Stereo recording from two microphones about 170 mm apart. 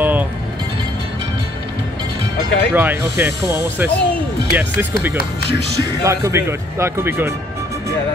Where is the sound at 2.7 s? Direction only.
15° right (ahead or behind).